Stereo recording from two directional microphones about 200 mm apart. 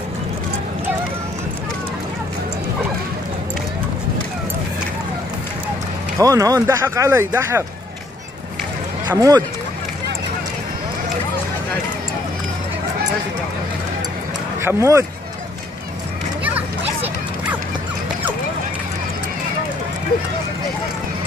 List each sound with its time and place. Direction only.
6.1 s speech: 15° right (ahead or behind)
9.1 s speech: 15° right (ahead or behind)
14.6 s speech: 15° right (ahead or behind)